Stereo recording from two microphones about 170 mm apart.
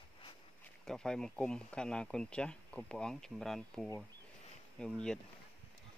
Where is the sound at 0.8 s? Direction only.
5° left (ahead or behind).